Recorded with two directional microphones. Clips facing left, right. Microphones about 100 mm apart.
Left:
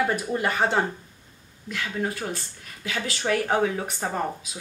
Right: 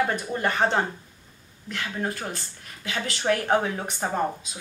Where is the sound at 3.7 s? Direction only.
25° right (ahead or behind).